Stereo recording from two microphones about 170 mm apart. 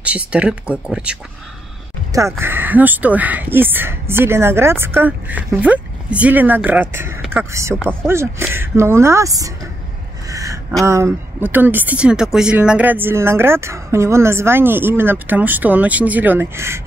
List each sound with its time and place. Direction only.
0.0 s speech: 10° right (ahead or behind)
2.1 s speech: 15° right (ahead or behind)
10.3 s a sound: 20° right (ahead or behind)
10.9 s speech: 15° right (ahead or behind)